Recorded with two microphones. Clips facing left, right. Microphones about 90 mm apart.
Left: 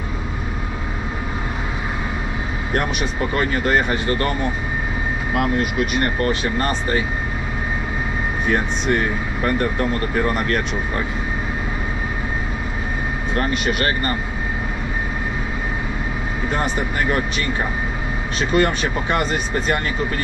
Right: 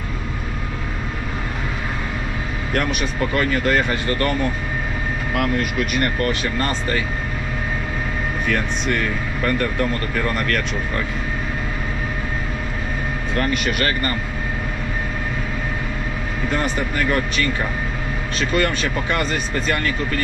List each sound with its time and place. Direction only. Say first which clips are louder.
2.7 s speech: even; 25° left (ahead or behind)
5.3 s speech: left 1 dB; 25° left (ahead or behind)
8.5 s speech: left 3 dB; 25° left (ahead or behind)
13.4 s speech: even; 25° left (ahead or behind)
16.5 s speech: even; 25° left (ahead or behind)